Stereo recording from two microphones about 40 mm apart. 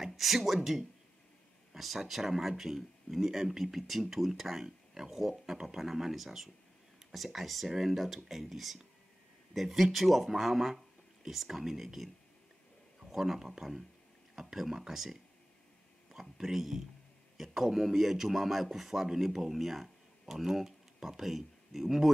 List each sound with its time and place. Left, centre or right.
0.0 s speech: centre
13.1 s speech: centre